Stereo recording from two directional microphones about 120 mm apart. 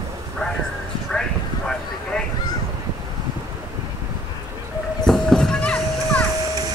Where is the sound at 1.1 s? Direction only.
5° left (ahead or behind).